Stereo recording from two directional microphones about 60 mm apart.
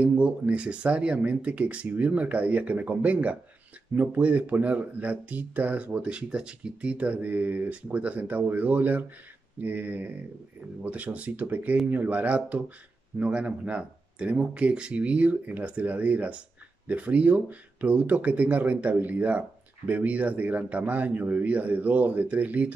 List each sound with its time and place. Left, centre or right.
0.0 s speech: right